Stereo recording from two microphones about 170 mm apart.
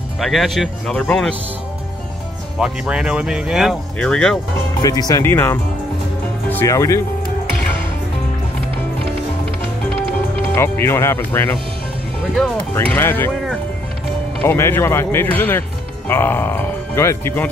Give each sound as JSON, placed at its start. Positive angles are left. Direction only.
{"t": 0.2, "sound": "speech", "side_deg": 0}
{"t": 2.6, "sound": "speech", "side_deg": -5}
{"t": 4.8, "sound": "speech", "side_deg": 20}
{"t": 10.5, "sound": "speech", "side_deg": 15}
{"t": 12.8, "sound": "speech", "side_deg": 10}
{"t": 14.4, "sound": "speech", "side_deg": 15}